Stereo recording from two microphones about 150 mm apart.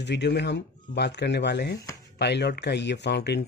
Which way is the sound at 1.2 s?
90° left.